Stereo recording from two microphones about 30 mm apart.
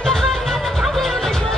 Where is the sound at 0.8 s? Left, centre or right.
Centre.